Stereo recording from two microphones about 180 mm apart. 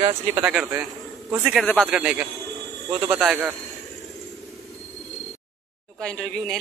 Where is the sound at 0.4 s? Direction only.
5° right (ahead or behind).